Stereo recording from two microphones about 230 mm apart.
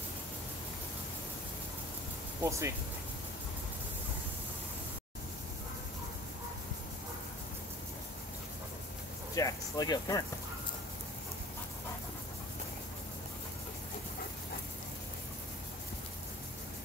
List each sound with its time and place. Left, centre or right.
2.4 s speech: centre
9.3 s speech: centre